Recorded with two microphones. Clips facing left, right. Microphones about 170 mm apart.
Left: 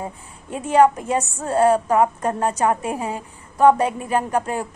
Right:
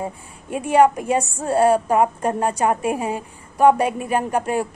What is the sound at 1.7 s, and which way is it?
Speech, 30° right (ahead or behind).